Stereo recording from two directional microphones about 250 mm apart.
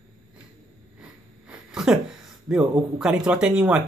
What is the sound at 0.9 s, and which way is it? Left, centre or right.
Speech, centre.